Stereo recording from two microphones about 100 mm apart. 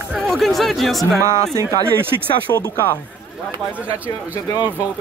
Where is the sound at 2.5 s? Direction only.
35° left (ahead or behind).